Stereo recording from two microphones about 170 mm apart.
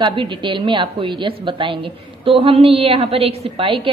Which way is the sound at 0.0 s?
25° right (ahead or behind).